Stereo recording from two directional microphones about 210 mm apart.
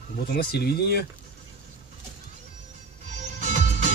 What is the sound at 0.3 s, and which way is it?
Speech, 50° left (ahead or behind).